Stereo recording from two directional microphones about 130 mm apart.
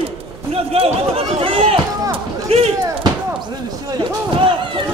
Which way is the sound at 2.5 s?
50° right (ahead or behind).